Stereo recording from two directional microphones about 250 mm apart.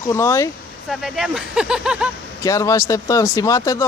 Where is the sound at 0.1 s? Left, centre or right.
Centre.